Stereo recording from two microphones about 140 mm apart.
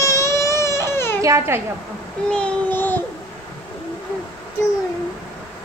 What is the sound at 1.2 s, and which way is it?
Speech, 20° right (ahead or behind).